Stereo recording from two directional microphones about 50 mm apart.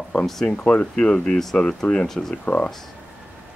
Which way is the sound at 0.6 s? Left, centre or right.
Left.